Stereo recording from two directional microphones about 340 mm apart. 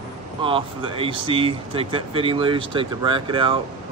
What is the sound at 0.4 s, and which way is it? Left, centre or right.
Speech, centre.